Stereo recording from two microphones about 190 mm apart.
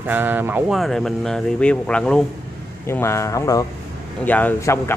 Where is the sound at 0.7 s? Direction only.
Centre (ahead or behind).